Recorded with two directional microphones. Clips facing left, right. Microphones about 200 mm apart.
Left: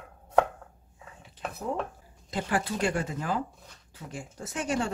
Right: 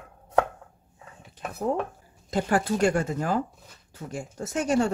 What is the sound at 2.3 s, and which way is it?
Speech, 45° right (ahead or behind).